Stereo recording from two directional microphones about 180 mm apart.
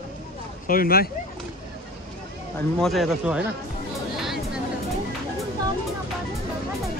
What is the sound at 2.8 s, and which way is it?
Speech, centre (ahead or behind).